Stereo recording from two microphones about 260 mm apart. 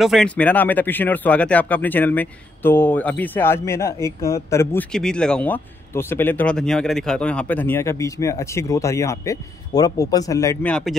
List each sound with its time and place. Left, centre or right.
0.0 s speech: centre